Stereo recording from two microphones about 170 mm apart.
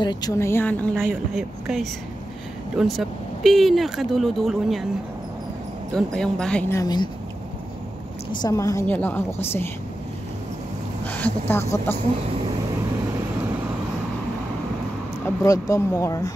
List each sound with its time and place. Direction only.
0.0 s a woman's voice: 25° left (ahead or behind); by 1.0 s 10° left (ahead or behind)
1.0 s speech: 5° right (ahead or behind)
5.9 s speech: 5° left (ahead or behind)
6.7 s speech: 20° left (ahead or behind)
8.3 s a woman's voice: 25° left (ahead or behind)
11.1 s a woman's voice: 10° left (ahead or behind)
15.2 s speech: 20° left (ahead or behind)